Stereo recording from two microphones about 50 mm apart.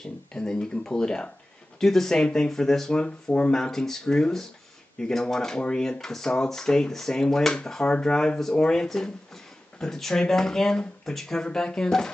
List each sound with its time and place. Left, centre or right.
0.0 s speech: centre